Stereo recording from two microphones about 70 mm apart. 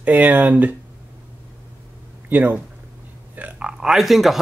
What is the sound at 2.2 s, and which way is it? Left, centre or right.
Speech, right.